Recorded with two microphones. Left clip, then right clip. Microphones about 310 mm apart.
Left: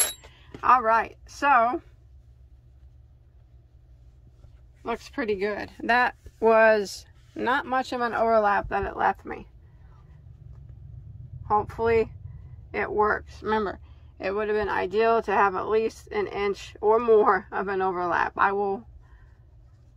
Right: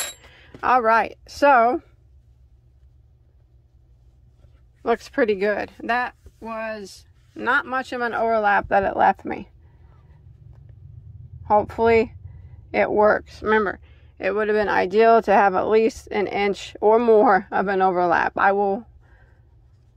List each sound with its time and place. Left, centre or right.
0.3 s speech: centre
4.8 s speech: centre
7.3 s speech: centre
11.4 s a man's voice: centre